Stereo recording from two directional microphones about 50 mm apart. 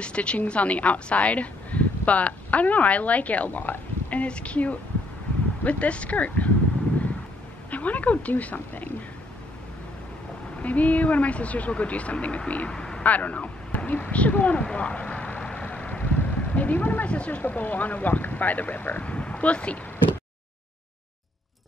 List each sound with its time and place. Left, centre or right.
0.0 s speech: left
7.7 s speech: left
10.6 s speech: left
12.7 s a sound: centre
13.0 s a sound: left
17.5 s speech: left
19.0 s speech: left